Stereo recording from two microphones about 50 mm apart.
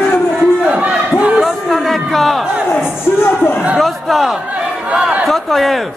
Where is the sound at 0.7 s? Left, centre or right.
Right.